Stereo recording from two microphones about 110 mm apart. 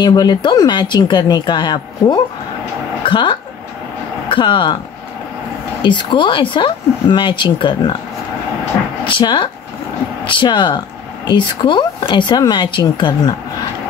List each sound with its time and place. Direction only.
0.0 s speech: 40° left (ahead or behind)
5.8 s speech: 45° left (ahead or behind)
9.0 s speech: 45° left (ahead or behind)